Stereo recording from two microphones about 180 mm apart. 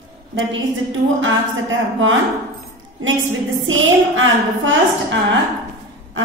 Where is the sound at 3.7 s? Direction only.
90° right.